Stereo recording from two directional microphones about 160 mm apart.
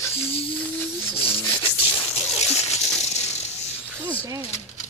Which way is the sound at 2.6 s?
45° left (ahead or behind).